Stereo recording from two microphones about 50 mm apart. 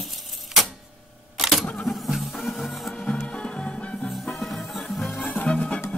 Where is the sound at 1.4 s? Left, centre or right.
Centre.